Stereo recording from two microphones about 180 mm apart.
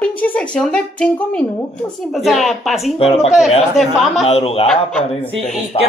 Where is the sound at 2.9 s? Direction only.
35° left (ahead or behind).